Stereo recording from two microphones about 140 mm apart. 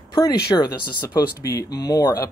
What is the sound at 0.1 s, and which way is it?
Speech, 30° left (ahead or behind).